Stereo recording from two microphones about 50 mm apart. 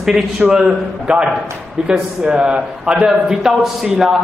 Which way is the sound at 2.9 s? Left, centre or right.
Centre.